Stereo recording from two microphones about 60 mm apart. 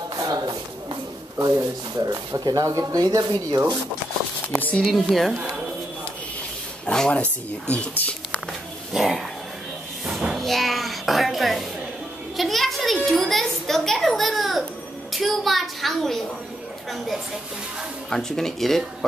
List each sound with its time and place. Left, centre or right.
0.2 s a sound: right
1.4 s speech: right
4.8 s speech: centre
6.9 s speech: centre
7.9 s speech: left
8.9 s speech: centre
10.3 s a sound: centre
15.1 s a child's voice: centre
18.1 s speech: centre